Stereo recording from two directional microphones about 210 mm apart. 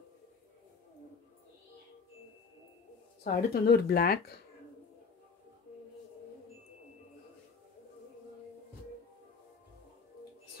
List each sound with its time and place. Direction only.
3.3 s speech: 50° left (ahead or behind)